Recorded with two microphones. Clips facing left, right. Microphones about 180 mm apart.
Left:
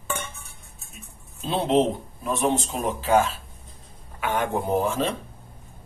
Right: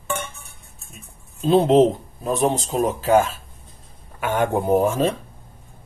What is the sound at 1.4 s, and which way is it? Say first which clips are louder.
Speech: right 7 dB; 45° right (ahead or behind).